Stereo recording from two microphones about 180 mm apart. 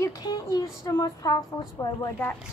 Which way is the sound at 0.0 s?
20° left (ahead or behind).